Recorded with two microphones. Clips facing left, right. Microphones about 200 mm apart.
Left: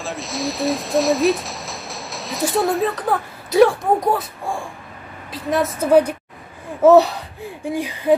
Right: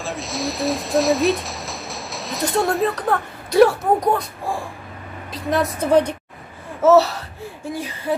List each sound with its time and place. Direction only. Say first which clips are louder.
0.0 s a woman's voice: even; centre (ahead or behind); by 8.1 s 15° left (ahead or behind)